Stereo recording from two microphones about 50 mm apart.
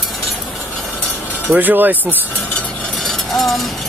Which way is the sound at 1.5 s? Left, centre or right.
Right.